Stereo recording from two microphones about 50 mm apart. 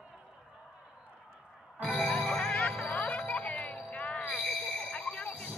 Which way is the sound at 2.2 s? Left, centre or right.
Centre.